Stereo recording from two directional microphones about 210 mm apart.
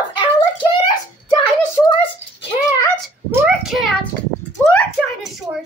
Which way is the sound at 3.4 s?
Centre (ahead or behind).